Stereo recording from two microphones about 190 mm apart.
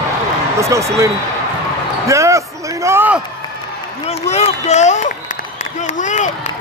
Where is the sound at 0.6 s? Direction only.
15° right (ahead or behind).